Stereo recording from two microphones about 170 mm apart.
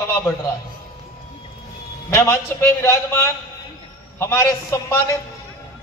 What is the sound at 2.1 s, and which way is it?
A man's voice, 15° left (ahead or behind).